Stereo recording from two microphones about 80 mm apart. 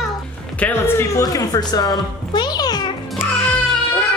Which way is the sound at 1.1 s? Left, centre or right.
Left.